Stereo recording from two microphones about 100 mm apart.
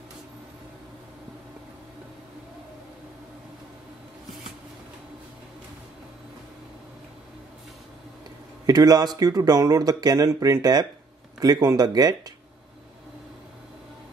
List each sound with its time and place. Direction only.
8.6 s speech: 40° right (ahead or behind)